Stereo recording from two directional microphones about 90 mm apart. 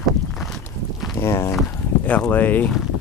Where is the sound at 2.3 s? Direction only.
20° left (ahead or behind).